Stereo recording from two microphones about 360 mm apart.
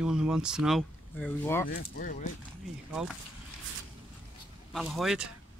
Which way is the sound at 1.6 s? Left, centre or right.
Left.